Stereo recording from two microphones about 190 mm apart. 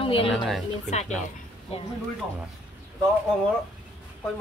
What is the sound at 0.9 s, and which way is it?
Speech, 35° left (ahead or behind).